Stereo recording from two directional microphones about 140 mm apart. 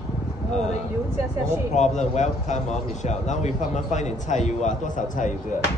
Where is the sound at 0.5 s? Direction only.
55° left (ahead or behind).